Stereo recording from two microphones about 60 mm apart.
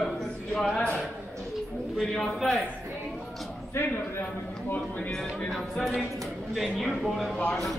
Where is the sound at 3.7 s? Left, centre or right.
Left.